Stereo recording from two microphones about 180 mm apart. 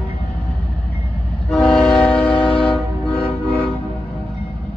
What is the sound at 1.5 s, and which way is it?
Train, 5° left (ahead or behind).